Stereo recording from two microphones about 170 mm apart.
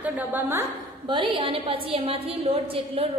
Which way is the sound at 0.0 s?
10° right (ahead or behind).